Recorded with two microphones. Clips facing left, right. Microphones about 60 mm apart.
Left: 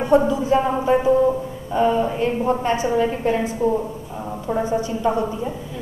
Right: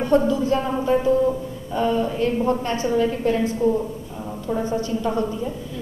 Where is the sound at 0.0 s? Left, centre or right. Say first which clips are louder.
Left 2 dB; centre.